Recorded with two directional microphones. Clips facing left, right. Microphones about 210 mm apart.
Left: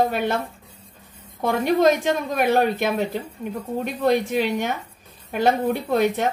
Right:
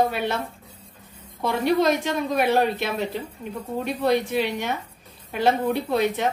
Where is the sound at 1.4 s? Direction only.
50° left (ahead or behind).